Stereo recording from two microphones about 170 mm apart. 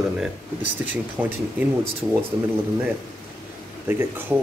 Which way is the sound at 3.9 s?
10° right (ahead or behind).